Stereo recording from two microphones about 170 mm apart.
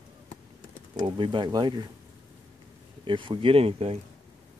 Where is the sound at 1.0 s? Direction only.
30° right (ahead or behind).